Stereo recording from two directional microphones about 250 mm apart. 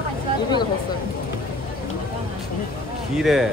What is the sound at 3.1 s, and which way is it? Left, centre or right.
Speech, centre.